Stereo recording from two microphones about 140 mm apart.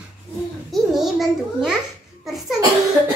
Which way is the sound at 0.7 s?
Centre (ahead or behind).